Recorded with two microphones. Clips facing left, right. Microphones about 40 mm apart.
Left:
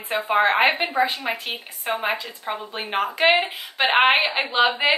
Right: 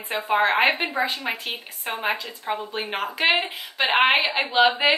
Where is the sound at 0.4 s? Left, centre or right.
Centre.